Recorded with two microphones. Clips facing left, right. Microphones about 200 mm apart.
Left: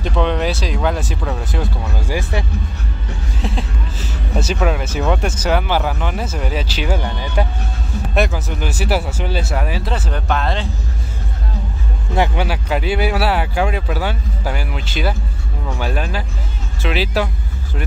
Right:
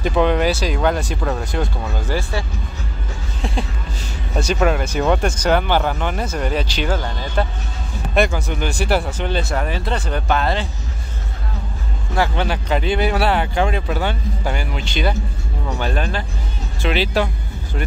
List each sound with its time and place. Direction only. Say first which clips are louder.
0.0 s speech: right 2 dB; 5° right (ahead or behind); by 2.4 s 15° left (ahead or behind)
3.4 s speech: even; centre (ahead or behind)
8.1 s speech: right 1 dB; centre (ahead or behind)
12.4 s speech: even; 5° left (ahead or behind)